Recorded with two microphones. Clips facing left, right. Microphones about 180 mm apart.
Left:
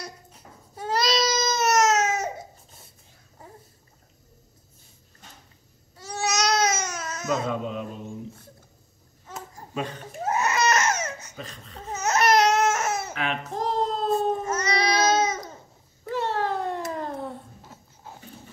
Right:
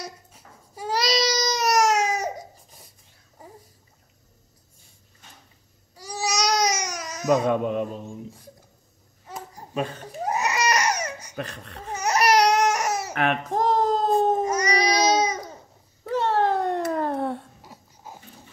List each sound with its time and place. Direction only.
0.0 s baby cry: 10° right (ahead or behind)
6.3 s babbling: 10° right (ahead or behind)
7.4 s mantra: 55° right (ahead or behind)
10.2 s baby cry: 15° right (ahead or behind)
11.3 s laughter: 70° right (ahead or behind)
11.9 s a sound: 10° right (ahead or behind)
13.1 s a child's voice: 55° right (ahead or behind)
14.1 s babbling: 15° right (ahead or behind)
16.3 s a sound: 55° right (ahead or behind)
17.6 s dog: 10° right (ahead or behind)